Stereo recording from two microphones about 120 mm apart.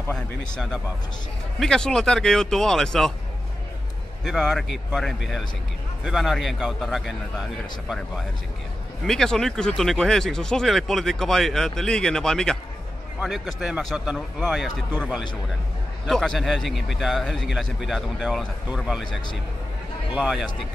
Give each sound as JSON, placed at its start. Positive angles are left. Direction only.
{"t": 0.1, "sound": "speech", "side_deg": 5}
{"t": 4.2, "sound": "speech", "side_deg": 0}
{"t": 9.0, "sound": "speech", "side_deg": 5}
{"t": 16.1, "sound": "speech", "side_deg": 5}
{"t": 20.2, "sound": "speech", "side_deg": -5}